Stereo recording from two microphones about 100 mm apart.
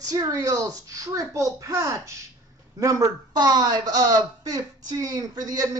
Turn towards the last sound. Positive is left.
turn(degrees=-35)  # may be behind; listen again after turning